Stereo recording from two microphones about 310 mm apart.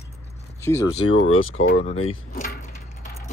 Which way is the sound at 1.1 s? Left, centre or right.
Left.